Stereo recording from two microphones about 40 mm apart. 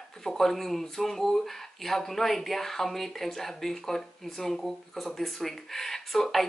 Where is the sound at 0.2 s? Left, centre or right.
Centre.